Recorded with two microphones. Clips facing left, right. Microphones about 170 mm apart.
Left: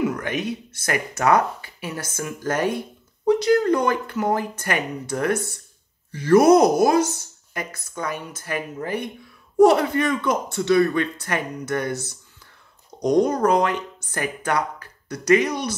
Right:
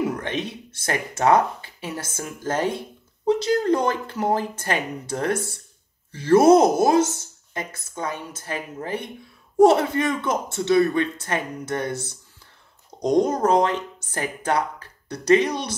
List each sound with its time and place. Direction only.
0.0 s speech: 30° right (ahead or behind)